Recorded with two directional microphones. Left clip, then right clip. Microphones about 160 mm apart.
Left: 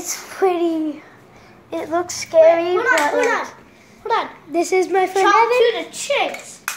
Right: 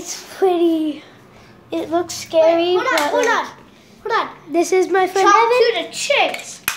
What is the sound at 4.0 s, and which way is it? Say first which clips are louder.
Speech: right 1 dB; 25° right (ahead or behind).